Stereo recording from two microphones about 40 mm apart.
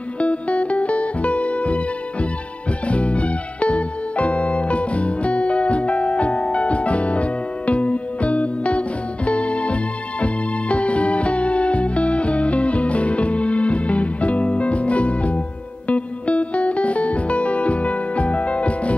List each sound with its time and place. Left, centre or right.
0.2 s music: left